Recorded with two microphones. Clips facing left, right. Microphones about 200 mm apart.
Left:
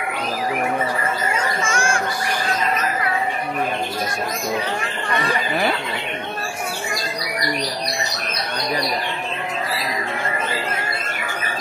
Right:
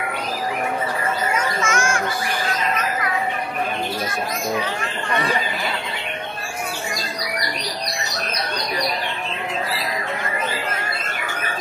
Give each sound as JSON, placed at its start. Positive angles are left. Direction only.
{"t": 1.3, "sound": "children playing", "side_deg": 30}